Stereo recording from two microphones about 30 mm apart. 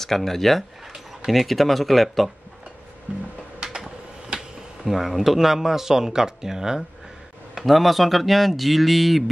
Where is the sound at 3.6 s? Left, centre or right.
Right.